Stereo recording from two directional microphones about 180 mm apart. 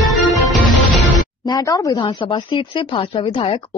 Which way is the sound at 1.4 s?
20° left (ahead or behind).